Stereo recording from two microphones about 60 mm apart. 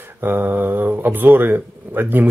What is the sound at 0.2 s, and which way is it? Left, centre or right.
Speech, right.